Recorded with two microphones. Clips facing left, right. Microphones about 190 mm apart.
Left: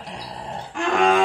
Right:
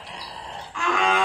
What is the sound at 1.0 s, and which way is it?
Music, 50° left (ahead or behind).